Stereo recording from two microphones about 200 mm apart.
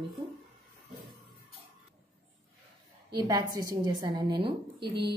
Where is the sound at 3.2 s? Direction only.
20° right (ahead or behind).